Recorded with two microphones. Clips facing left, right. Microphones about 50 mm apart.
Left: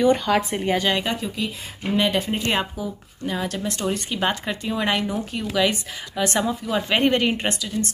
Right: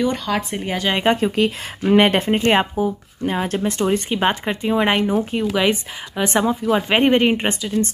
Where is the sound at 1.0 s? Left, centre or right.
Right.